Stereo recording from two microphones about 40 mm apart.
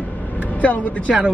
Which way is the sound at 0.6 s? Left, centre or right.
Left.